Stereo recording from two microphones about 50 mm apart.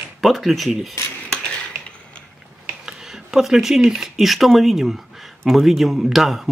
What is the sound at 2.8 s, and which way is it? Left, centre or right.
Speech, centre.